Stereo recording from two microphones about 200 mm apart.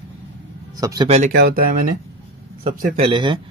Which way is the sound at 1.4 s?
50° right (ahead or behind).